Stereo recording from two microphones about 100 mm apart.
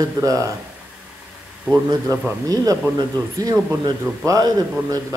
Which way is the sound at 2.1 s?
35° right (ahead or behind).